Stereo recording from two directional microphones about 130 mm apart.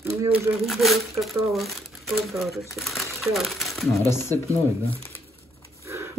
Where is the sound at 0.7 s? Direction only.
Centre (ahead or behind).